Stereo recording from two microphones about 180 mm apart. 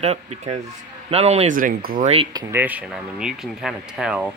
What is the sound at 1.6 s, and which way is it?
Speech, 50° right (ahead or behind).